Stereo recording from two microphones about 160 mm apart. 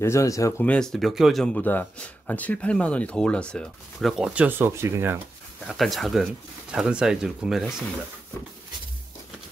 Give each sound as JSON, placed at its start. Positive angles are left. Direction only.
{"t": 0.0, "sound": "speech", "side_deg": 20}
{"t": 0.7, "sound": "speech", "side_deg": 5}
{"t": 5.7, "sound": "speech", "side_deg": 0}